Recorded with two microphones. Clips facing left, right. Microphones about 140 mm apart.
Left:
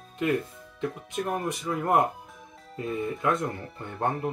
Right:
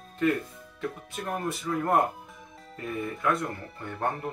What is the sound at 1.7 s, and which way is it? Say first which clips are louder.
Speech: right 2 dB; 15° left (ahead or behind).